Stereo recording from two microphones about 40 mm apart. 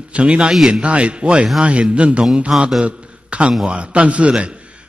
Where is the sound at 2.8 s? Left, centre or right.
Right.